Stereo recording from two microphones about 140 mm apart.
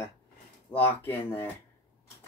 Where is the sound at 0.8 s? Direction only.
15° left (ahead or behind).